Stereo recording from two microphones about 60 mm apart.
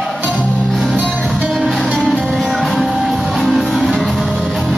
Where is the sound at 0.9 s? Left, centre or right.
Right.